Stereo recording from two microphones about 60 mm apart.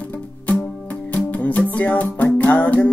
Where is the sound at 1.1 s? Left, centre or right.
Left.